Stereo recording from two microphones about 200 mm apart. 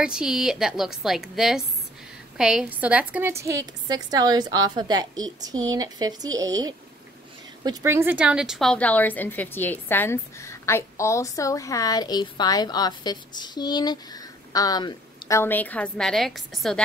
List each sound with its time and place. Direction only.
0.0 s a woman's voice: 5° right (ahead or behind)